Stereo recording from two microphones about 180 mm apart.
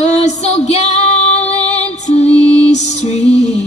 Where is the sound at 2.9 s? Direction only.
40° left (ahead or behind).